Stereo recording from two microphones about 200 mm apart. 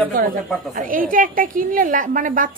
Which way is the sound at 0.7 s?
45° right (ahead or behind).